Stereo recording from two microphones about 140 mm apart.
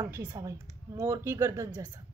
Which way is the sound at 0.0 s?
20° right (ahead or behind).